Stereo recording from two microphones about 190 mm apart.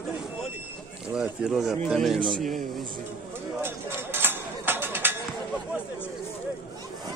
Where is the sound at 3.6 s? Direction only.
10° right (ahead or behind).